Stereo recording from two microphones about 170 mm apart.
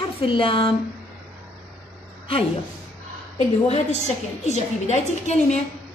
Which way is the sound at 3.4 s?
45° left (ahead or behind).